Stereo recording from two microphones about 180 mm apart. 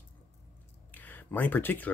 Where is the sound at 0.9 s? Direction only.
10° left (ahead or behind).